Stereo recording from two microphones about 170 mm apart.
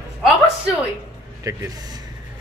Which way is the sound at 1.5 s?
20° right (ahead or behind).